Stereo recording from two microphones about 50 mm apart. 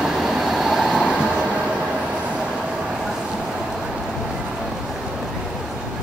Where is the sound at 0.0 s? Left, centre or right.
Centre.